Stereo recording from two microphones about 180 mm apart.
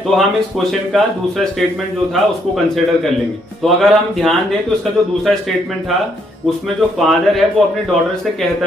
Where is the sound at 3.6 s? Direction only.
Centre (ahead or behind).